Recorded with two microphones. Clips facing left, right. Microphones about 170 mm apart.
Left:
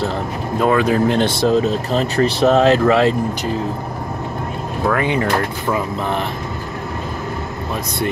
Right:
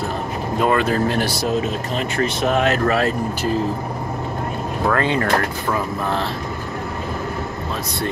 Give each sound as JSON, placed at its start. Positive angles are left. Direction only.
{"t": 0.6, "sound": "speech", "side_deg": 0}
{"t": 0.8, "sound": "speech", "side_deg": 15}
{"t": 1.9, "sound": "speech", "side_deg": 35}
{"t": 4.9, "sound": "speech", "side_deg": 15}